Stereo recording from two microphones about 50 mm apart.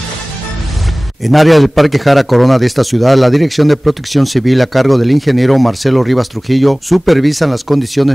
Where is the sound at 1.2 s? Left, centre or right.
Centre.